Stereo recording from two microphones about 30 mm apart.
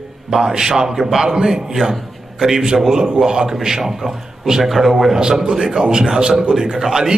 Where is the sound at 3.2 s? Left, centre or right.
Right.